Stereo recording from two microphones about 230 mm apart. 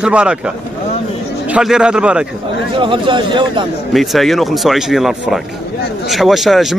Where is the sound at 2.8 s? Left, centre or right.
Right.